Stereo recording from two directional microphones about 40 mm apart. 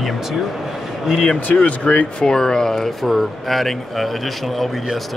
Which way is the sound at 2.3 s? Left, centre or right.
Centre.